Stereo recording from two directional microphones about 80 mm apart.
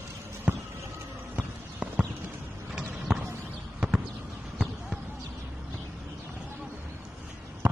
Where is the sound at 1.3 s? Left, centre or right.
Centre.